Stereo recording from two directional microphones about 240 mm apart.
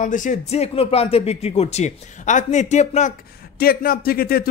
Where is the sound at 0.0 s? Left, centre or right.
Left.